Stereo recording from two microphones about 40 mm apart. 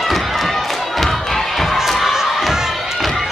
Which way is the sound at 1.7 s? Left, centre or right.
Centre.